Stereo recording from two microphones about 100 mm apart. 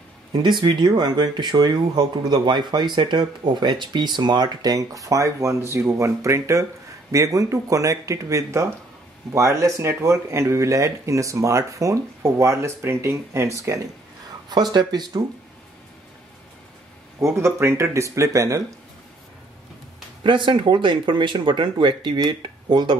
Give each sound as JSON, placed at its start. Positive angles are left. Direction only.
{"t": 0.3, "sound": "speech", "side_deg": -50}
{"t": 14.5, "sound": "speech", "side_deg": -45}
{"t": 17.2, "sound": "speech", "side_deg": -30}
{"t": 20.2, "sound": "speech", "side_deg": -55}